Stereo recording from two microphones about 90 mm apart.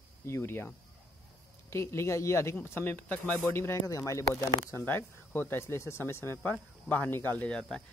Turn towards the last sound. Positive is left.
turn(degrees=10)  # may be behind; listen again after turning